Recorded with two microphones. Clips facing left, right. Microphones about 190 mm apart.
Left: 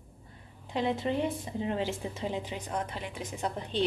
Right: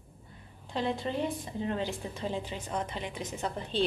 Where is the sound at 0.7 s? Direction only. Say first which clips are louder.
Left 2 dB; 20° left (ahead or behind).